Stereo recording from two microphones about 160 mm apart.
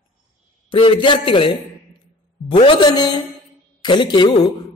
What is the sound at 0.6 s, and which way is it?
A man's voice, 30° left (ahead or behind).